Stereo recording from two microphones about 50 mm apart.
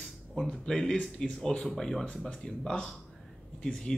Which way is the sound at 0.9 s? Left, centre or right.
Left.